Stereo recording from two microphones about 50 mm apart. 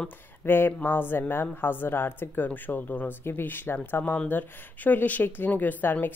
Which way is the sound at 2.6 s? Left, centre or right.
Left.